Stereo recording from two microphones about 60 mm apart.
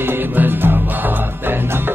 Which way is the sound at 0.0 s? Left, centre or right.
Right.